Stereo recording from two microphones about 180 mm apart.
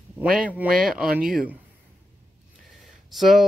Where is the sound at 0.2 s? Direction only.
5° right (ahead or behind).